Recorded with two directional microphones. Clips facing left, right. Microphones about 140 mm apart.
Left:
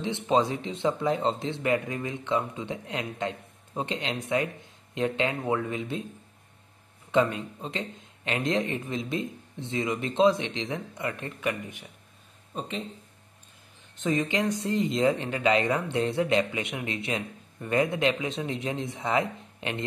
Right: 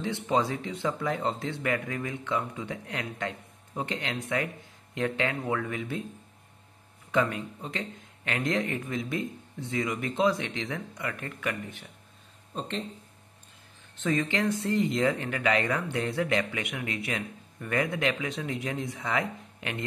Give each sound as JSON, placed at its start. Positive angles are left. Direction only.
{"t": 0.0, "sound": "speech", "side_deg": 20}
{"t": 7.1, "sound": "speech", "side_deg": 25}
{"t": 12.5, "sound": "speech", "side_deg": 5}
{"t": 13.9, "sound": "speech", "side_deg": 20}